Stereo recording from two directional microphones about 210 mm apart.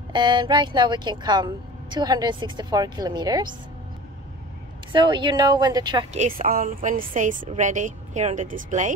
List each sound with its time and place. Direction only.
0.1 s speech: 20° right (ahead or behind)
4.9 s speech: 20° right (ahead or behind)
6.1 s speech: 40° right (ahead or behind)